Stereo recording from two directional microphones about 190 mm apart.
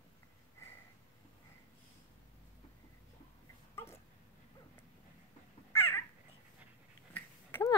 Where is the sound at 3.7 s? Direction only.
15° left (ahead or behind).